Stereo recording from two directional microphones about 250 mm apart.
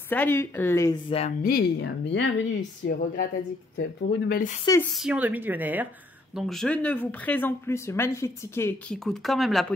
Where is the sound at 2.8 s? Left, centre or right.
Left.